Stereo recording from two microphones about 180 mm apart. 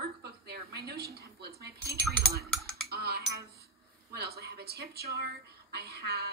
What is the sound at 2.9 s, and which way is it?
Cutlery, 60° right (ahead or behind).